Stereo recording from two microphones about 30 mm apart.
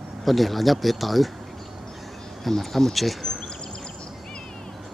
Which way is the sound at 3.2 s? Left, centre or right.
Centre.